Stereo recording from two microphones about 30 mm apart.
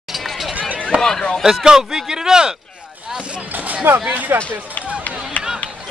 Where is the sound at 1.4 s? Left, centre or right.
Centre.